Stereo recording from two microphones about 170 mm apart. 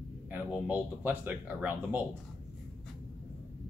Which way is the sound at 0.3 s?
10° right (ahead or behind).